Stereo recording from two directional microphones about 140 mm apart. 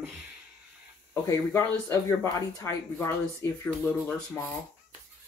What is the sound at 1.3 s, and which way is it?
Speech, 20° left (ahead or behind).